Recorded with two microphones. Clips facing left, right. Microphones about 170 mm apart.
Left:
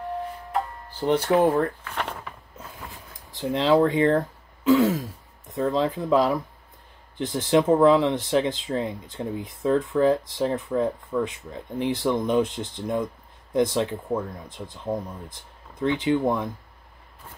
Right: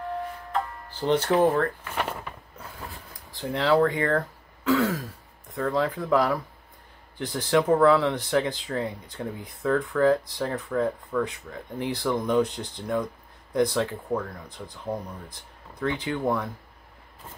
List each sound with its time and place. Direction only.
0.5 s music: 15° left (ahead or behind)
1.9 s a sound: 10° right (ahead or behind)
3.3 s speech: 20° left (ahead or behind)